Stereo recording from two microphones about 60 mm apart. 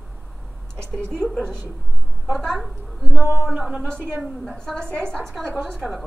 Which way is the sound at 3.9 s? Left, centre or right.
Right.